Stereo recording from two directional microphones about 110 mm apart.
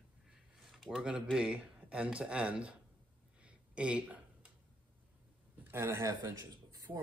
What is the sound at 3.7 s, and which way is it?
Speech, 10° right (ahead or behind).